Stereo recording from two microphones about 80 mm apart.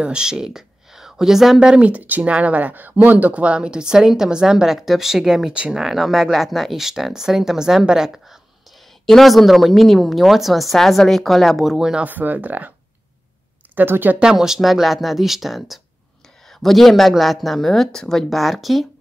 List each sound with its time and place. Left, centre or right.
0.0 s a woman's voice: centre
12.0 s speech: right
13.7 s speech: right
14.2 s a woman's voice: centre